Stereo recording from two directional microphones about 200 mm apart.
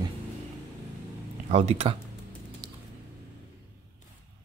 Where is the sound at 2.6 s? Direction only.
20° right (ahead or behind).